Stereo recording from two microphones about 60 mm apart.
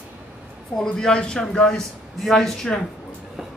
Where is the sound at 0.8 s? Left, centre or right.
Centre.